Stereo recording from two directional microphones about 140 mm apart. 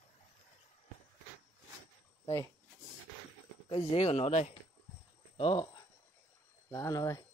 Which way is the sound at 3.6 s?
45° left (ahead or behind).